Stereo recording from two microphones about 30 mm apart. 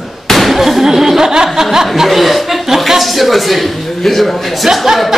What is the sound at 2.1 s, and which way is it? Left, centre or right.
A man's voice, centre.